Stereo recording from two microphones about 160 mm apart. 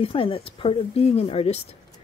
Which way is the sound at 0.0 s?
35° left (ahead or behind).